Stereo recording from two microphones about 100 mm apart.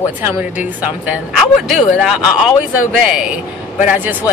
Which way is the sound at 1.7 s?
5° right (ahead or behind).